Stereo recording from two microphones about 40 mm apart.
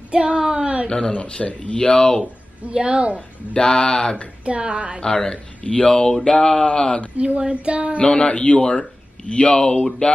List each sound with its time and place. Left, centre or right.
0.1 s speech: right
0.4 s a sound: centre
0.8 s speech: centre
1.1 s speech: left
2.7 s child singing: right
3.2 s speech: left
4.5 s child singing: right
5.0 s speech: left
7.2 s child singing: right
8.0 s speech: left